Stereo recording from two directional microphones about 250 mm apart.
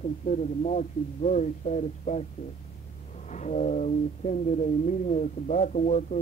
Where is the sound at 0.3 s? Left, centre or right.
Left.